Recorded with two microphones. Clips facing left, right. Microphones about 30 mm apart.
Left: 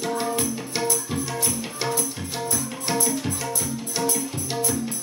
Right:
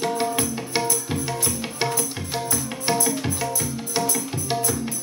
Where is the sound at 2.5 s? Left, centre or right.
Right.